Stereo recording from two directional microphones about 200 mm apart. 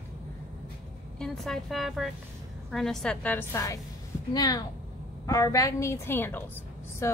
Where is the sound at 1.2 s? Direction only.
Centre (ahead or behind).